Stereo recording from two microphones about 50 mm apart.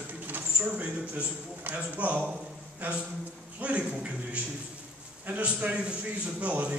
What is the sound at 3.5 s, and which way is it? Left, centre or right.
Speech, right.